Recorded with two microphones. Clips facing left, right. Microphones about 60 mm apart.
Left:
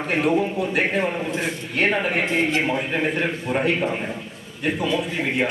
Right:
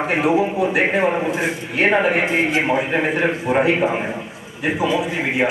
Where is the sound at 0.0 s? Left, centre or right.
Centre.